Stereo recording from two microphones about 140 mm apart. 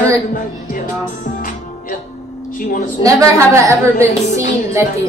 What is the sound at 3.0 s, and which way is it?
A woman's voice, 20° right (ahead or behind).